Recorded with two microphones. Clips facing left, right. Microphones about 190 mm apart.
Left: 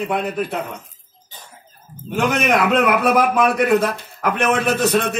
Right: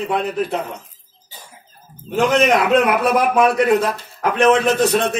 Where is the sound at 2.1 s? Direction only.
55° left (ahead or behind).